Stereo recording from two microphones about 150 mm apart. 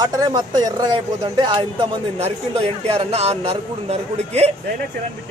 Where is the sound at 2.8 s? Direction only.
45° right (ahead or behind).